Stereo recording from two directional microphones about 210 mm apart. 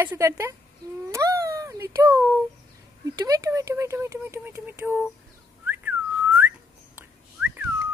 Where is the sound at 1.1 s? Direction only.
15° right (ahead or behind).